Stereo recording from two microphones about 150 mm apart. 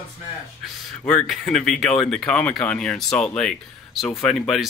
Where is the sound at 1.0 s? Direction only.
5° left (ahead or behind).